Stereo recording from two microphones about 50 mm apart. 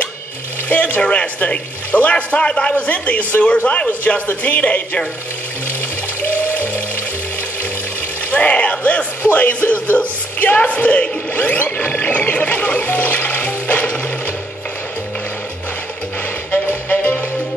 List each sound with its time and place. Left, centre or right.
0.7 s speech: left
1.0 s speech: left
8.3 s a sound: left
9.3 s speech: left
11.3 s music: left
13.5 s ratchet: left
16.9 s music: left